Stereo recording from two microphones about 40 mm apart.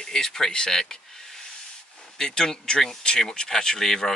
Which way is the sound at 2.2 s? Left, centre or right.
Centre.